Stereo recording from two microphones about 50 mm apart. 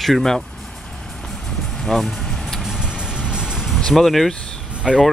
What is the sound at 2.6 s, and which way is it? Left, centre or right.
Music, centre.